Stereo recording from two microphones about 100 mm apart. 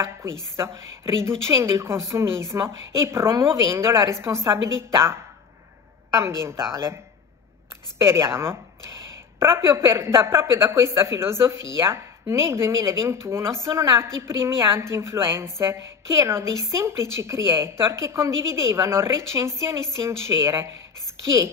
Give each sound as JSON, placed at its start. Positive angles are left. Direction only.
{"t": 0.6, "sound": "speech", "side_deg": -25}
{"t": 8.0, "sound": "speech", "side_deg": -25}